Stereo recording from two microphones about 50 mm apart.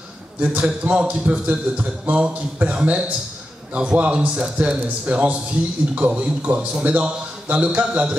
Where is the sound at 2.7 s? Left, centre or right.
Right.